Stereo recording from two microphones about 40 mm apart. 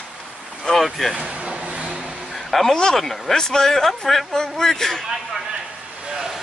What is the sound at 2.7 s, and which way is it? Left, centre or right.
Speech, centre.